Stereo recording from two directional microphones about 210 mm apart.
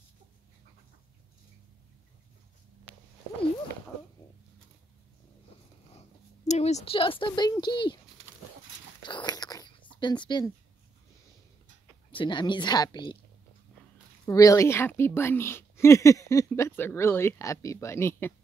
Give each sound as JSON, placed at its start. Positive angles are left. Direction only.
{"t": 6.4, "sound": "speech", "side_deg": 30}
{"t": 9.0, "sound": "a sound", "side_deg": 20}
{"t": 12.1, "sound": "a woman's voice", "side_deg": 25}
{"t": 14.2, "sound": "speech", "side_deg": 15}